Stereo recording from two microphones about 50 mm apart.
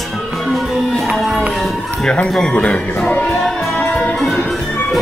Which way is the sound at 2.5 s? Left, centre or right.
Left.